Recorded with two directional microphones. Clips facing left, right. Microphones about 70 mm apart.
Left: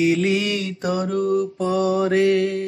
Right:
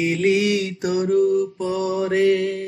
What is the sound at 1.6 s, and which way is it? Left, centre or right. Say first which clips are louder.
Mantra: left 3 dB; left.